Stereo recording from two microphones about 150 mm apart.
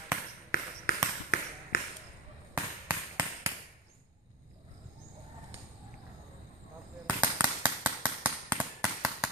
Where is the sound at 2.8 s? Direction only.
10° right (ahead or behind).